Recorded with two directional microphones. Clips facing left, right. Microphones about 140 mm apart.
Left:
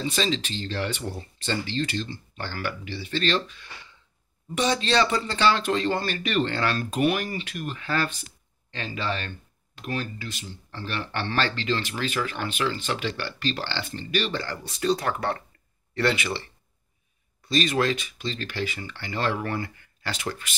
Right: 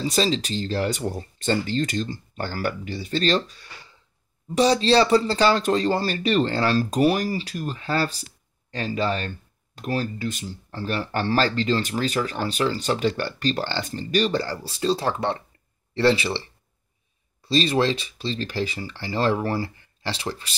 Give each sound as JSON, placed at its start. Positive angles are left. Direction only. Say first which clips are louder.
{"t": 0.0, "sound": "speech", "louder": "right 4 dB", "side_deg": -35}
{"t": 17.5, "sound": "speech", "louder": "right 3 dB", "side_deg": -30}